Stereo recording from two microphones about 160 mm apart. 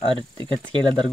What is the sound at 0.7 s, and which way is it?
Speech, 30° right (ahead or behind).